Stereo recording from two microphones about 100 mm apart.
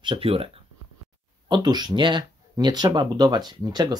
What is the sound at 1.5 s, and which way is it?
Speech, 45° right (ahead or behind).